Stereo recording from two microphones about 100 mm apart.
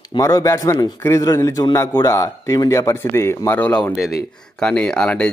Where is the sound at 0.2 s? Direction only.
35° left (ahead or behind).